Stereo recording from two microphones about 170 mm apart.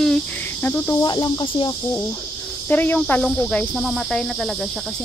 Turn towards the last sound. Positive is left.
turn(degrees=5)  # may be behind; listen again after turning